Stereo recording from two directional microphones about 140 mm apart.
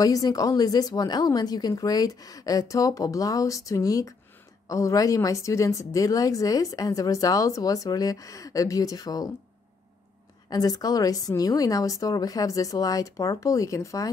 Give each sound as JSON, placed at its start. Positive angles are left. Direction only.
{"t": 0.0, "sound": "speech", "side_deg": 25}
{"t": 10.5, "sound": "speech", "side_deg": 25}